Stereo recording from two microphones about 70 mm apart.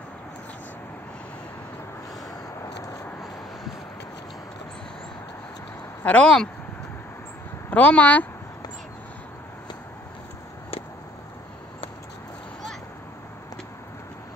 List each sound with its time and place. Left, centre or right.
6.0 s speech: centre
7.7 s speech: left